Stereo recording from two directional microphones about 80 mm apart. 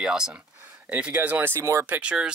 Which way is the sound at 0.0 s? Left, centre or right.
Centre.